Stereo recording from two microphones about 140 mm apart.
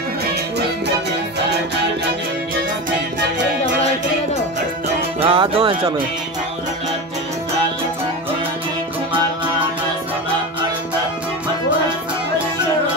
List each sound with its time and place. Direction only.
5.2 s music: 40° right (ahead or behind)